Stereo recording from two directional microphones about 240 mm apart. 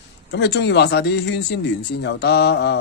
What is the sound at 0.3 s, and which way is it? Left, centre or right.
Speech, left.